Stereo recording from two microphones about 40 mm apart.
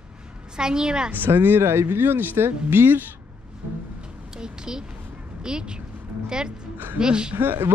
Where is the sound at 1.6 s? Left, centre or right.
Right.